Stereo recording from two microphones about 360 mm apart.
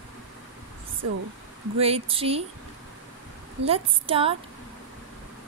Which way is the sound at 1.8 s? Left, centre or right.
Centre.